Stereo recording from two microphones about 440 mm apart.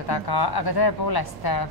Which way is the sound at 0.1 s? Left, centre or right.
Left.